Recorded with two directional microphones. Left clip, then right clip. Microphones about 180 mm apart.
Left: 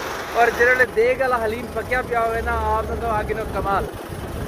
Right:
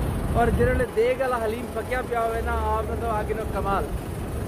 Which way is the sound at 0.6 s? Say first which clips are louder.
Left 6 dB; 5° right (ahead or behind).